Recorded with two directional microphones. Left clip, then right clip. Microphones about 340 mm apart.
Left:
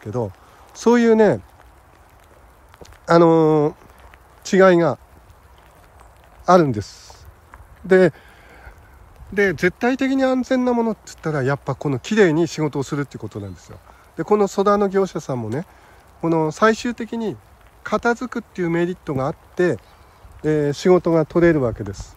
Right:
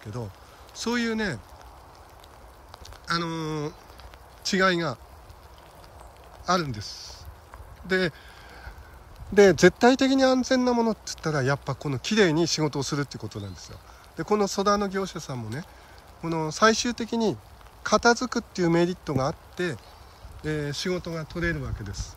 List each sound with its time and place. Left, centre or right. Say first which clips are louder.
0.0 s speech: left 13 dB; centre
3.1 s speech: left 16 dB; centre
6.4 s speech: left 11 dB; centre
7.8 s a sound: left 11 dB; centre
9.3 s speech: right 2 dB; centre